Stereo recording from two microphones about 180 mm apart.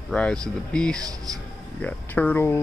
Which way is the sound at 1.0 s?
20° right (ahead or behind).